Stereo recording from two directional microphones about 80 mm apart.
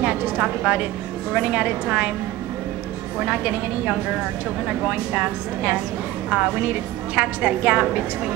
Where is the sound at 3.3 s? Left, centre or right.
Centre.